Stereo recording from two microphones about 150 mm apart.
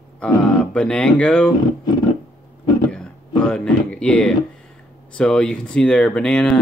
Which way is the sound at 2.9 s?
5° left (ahead or behind).